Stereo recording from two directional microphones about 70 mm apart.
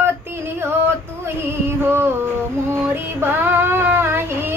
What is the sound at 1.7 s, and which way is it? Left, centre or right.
Child singing, right.